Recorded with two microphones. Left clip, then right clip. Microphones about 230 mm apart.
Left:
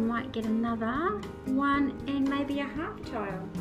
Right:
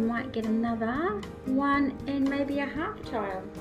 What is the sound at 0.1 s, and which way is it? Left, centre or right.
Speech, centre.